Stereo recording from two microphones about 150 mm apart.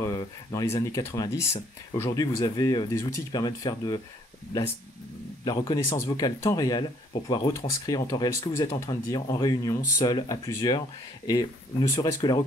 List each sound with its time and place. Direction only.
0.0 s speech: 25° left (ahead or behind)
5.4 s a man's voice: 30° left (ahead or behind)